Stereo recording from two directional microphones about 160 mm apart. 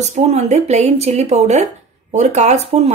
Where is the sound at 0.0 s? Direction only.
45° right (ahead or behind).